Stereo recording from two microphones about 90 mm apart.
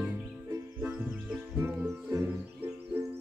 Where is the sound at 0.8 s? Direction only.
25° right (ahead or behind).